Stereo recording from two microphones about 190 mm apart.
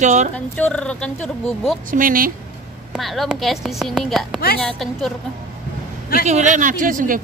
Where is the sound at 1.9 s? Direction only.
45° right (ahead or behind).